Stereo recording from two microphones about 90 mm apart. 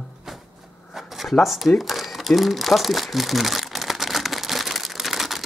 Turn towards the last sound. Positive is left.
turn(degrees=0)  # may be behind; listen again after turning